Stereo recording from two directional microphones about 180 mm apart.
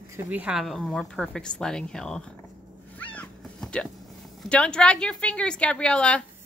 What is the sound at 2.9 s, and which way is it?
Cat, 10° left (ahead or behind).